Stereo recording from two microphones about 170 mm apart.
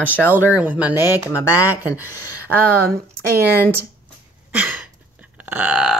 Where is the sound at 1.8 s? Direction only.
10° right (ahead or behind).